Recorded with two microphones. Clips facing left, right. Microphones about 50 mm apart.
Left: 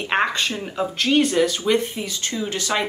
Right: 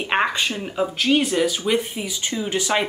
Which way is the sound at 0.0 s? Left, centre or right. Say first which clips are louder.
Even; centre.